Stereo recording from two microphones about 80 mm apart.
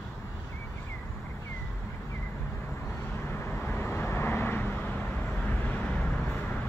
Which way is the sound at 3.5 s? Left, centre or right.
Left.